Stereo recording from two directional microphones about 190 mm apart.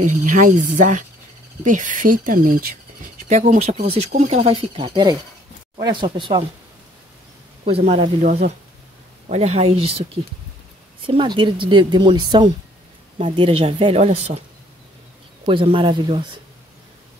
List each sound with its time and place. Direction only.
0.0 s a woman's voice: 40° right (ahead or behind); by 6.4 s 25° right (ahead or behind)
7.6 s speech: 30° right (ahead or behind)
11.1 s a woman's voice: 25° right (ahead or behind)
15.4 s a woman's voice: 30° right (ahead or behind)